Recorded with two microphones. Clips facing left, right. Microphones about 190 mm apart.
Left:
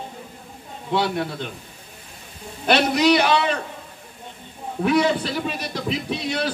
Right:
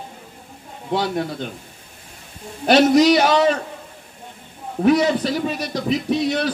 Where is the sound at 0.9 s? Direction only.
45° right (ahead or behind).